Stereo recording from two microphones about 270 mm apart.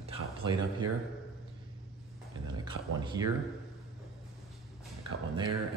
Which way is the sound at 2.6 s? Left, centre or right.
Centre.